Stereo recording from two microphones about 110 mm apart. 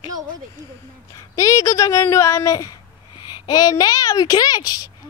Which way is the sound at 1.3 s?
30° left (ahead or behind).